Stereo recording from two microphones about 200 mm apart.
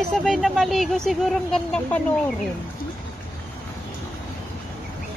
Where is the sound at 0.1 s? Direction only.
Centre (ahead or behind).